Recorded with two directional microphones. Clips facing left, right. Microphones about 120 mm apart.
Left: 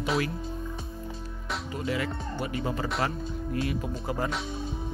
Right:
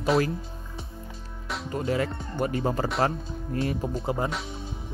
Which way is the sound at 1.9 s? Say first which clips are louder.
Right 2 dB; 40° right (ahead or behind).